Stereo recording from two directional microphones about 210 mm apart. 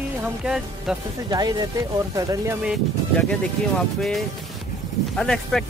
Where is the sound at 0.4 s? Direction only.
5° right (ahead or behind).